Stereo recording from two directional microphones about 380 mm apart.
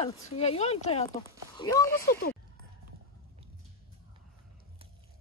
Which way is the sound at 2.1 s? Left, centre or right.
Left.